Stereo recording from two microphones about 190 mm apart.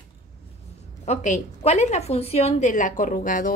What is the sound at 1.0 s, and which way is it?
A woman's voice, 35° left (ahead or behind).